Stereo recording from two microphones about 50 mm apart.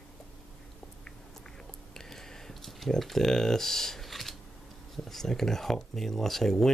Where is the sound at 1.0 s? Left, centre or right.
Centre.